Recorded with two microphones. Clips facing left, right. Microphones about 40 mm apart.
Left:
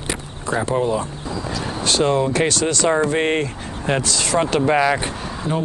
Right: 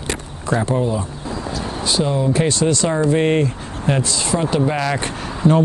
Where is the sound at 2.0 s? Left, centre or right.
Left.